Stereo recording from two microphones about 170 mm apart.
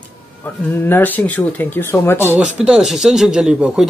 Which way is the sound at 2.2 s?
5° right (ahead or behind).